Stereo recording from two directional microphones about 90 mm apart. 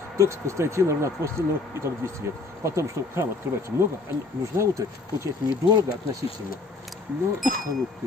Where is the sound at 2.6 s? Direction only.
35° right (ahead or behind).